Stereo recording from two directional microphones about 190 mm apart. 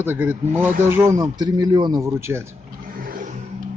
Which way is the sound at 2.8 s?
50° right (ahead or behind).